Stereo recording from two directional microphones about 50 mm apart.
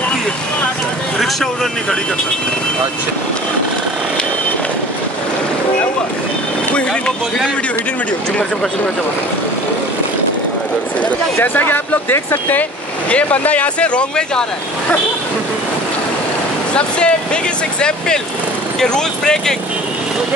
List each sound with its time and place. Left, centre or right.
1.4 s speech: centre
6.7 s speech: left
11.3 s speech: left
13.1 s speech: left
16.7 s speech: left